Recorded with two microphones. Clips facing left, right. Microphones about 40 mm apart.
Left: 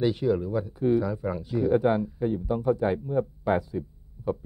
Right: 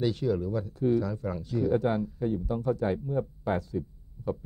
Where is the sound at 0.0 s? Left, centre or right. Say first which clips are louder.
Left 3 dB; centre.